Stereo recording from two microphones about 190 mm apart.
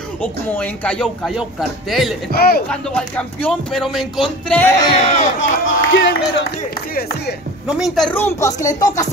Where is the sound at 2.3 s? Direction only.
55° left (ahead or behind).